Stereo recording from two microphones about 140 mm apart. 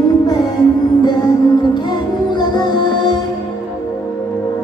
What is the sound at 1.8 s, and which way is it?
Music, 30° left (ahead or behind).